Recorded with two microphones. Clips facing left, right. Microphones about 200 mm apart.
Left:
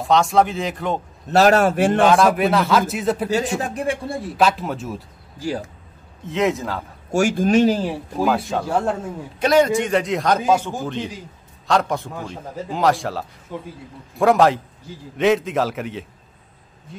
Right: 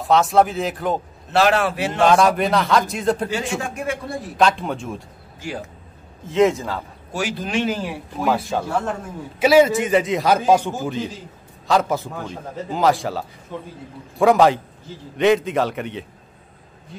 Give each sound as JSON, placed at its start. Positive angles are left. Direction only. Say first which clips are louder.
{"t": 0.0, "sound": "a man's voice", "louder": "right 1 dB", "side_deg": 0}
{"t": 1.3, "sound": "speech", "louder": "left 3 dB", "side_deg": 40}
{"t": 2.0, "sound": "a man's voice", "louder": "right 2 dB", "side_deg": 0}
{"t": 3.3, "sound": "a man's voice", "louder": "left 3 dB", "side_deg": 40}
{"t": 4.4, "sound": "a man's voice", "louder": "right 1 dB", "side_deg": 5}
{"t": 6.2, "sound": "a man's voice", "louder": "right 4 dB", "side_deg": 0}
{"t": 7.1, "sound": "speech", "louder": "left 9 dB", "side_deg": 45}
{"t": 8.3, "sound": "a man's voice", "louder": "right 1 dB", "side_deg": 0}